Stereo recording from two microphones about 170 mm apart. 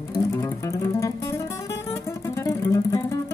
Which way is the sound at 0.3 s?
15° left (ahead or behind).